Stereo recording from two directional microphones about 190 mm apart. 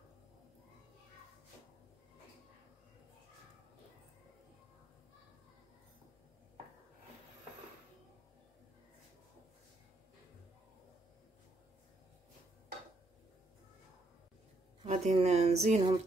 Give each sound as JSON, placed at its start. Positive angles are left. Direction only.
{"t": 14.8, "sound": "speech", "side_deg": -30}